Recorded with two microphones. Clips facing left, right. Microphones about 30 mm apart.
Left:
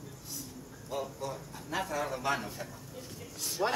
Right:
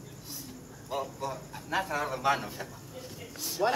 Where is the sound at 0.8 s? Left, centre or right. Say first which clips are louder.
Right 3 dB; centre.